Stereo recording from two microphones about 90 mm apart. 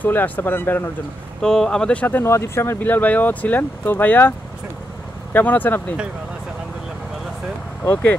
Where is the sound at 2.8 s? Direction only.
20° left (ahead or behind).